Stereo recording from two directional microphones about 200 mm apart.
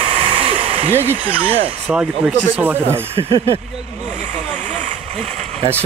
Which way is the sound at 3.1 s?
25° right (ahead or behind).